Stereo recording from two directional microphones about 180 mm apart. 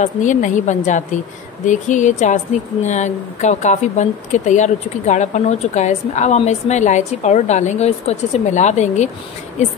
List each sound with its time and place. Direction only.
0.0 s a woman's voice: 45° left (ahead or behind)